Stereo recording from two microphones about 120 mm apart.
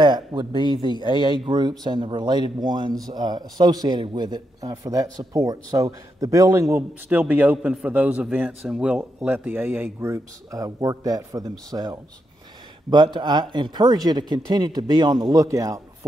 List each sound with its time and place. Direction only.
0.0 s speech: 40° right (ahead or behind)
7.1 s a man's voice: 15° right (ahead or behind)